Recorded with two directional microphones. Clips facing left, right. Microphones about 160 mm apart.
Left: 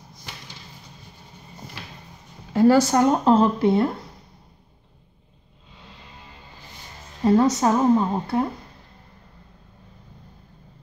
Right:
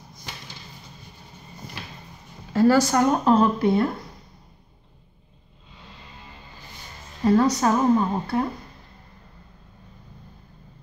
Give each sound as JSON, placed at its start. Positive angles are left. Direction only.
{"t": 2.5, "sound": "speech", "side_deg": 20}
{"t": 7.2, "sound": "speech", "side_deg": 20}